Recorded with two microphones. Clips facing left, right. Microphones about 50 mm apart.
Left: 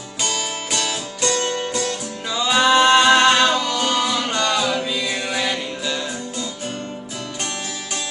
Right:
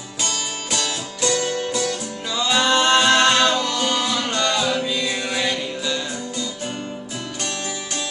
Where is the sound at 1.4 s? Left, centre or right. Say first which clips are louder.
Even; left.